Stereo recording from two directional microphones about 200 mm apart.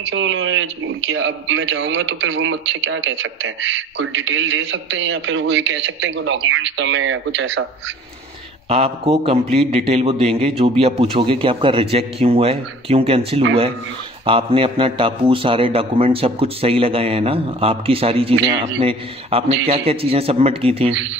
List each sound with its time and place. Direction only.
0.1 s a man's voice: 75° right (ahead or behind)
8.6 s a man's voice: 30° right (ahead or behind)